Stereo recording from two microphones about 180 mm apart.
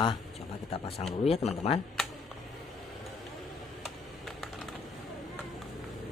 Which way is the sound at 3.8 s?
Centre (ahead or behind).